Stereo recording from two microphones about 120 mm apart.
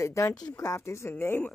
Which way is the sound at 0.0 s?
25° left (ahead or behind).